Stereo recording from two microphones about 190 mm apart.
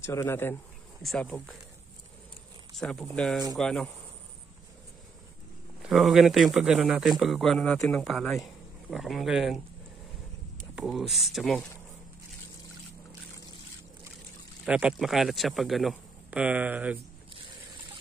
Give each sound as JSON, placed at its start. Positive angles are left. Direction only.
{"t": 0.0, "sound": "speech", "side_deg": 15}
{"t": 2.7, "sound": "speech", "side_deg": 0}
{"t": 5.8, "sound": "speech", "side_deg": 0}
{"t": 10.8, "sound": "speech", "side_deg": 0}
{"t": 14.7, "sound": "speech", "side_deg": -5}